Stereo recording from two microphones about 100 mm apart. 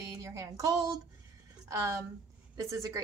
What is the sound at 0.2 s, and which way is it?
A woman's voice, 30° right (ahead or behind).